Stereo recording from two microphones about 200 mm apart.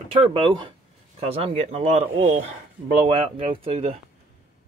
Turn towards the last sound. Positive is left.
turn(degrees=-30)  # may be behind; listen again after turning